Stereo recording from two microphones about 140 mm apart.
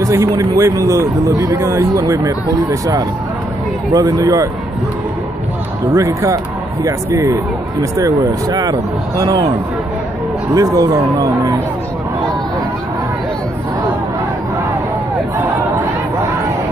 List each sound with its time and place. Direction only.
0.0 s a man's voice: 20° right (ahead or behind)
5.9 s speech: 20° right (ahead or behind)
10.5 s speech: 25° right (ahead or behind)
15.3 s chatter: 10° right (ahead or behind)